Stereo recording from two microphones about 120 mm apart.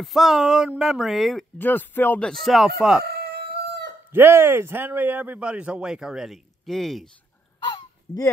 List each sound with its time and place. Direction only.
0.0 s speech: centre (ahead or behind)
1.6 s speech: 15° left (ahead or behind); by 3.0 s 5° right (ahead or behind)
4.1 s a man's voice: 20° right (ahead or behind); by 7.1 s centre (ahead or behind)
7.6 s goose: 35° left (ahead or behind)